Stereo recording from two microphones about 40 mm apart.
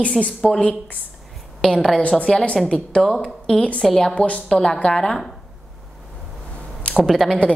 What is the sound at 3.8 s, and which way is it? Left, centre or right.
A woman's voice, centre.